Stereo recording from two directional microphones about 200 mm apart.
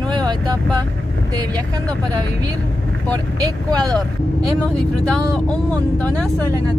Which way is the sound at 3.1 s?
20° right (ahead or behind).